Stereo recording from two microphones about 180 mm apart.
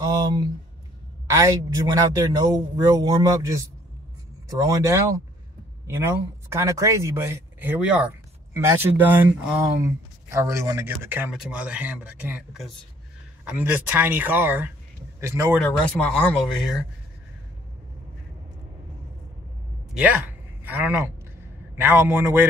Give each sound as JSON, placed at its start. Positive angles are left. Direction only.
{"t": 0.1, "sound": "a man's voice", "side_deg": -25}
{"t": 4.6, "sound": "a man's voice", "side_deg": -20}
{"t": 6.5, "sound": "speech", "side_deg": -15}
{"t": 15.9, "sound": "speech", "side_deg": 5}
{"t": 19.9, "sound": "speech", "side_deg": -5}